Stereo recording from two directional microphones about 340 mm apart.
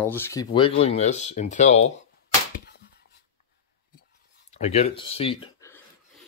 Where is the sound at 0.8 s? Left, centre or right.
Centre.